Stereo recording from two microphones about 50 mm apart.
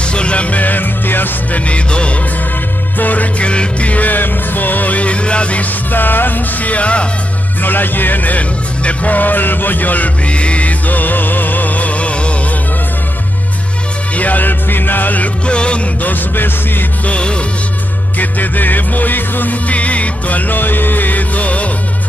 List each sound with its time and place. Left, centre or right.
0.0 s music: left
1.7 s music: left
3.0 s music: left
7.6 s music: left
14.1 s music: left
15.4 s music: left
16.0 s music: left
17.0 s music: left
18.2 s music: left
19.7 s music: left